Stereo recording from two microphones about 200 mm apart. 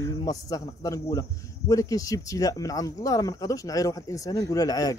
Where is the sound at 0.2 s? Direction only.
20° left (ahead or behind).